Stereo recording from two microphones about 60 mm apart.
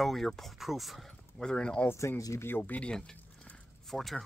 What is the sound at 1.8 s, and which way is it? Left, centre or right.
Speech, left.